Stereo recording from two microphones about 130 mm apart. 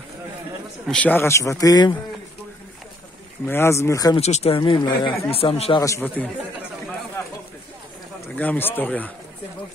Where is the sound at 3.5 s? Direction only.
20° left (ahead or behind).